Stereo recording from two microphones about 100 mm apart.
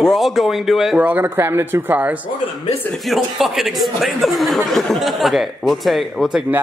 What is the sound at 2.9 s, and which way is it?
Speech, centre (ahead or behind).